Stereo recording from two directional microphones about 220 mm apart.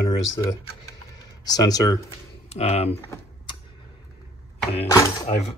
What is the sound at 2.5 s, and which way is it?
Speech, 30° left (ahead or behind).